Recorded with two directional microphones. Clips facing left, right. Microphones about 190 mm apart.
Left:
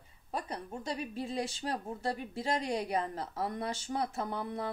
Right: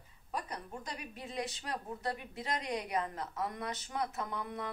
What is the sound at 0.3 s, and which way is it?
Speech, 30° left (ahead or behind).